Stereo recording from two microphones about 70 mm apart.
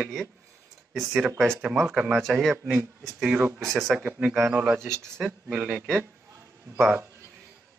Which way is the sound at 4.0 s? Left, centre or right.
Centre.